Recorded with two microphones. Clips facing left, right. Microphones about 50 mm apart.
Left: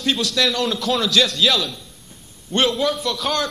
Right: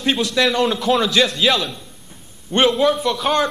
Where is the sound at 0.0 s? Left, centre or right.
Right.